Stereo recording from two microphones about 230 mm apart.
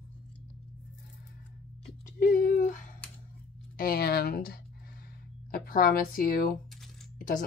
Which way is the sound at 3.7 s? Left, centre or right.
Left.